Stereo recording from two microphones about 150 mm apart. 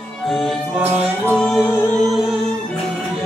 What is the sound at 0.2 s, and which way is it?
Music, centre (ahead or behind).